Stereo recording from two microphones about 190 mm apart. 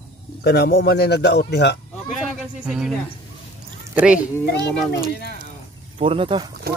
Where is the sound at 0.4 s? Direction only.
55° left (ahead or behind).